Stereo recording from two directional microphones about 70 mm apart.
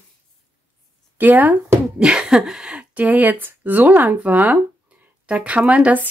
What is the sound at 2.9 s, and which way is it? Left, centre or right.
Speech, right.